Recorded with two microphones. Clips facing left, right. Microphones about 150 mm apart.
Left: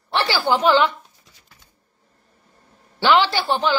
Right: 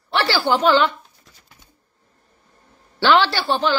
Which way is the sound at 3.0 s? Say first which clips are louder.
Even; 15° left (ahead or behind).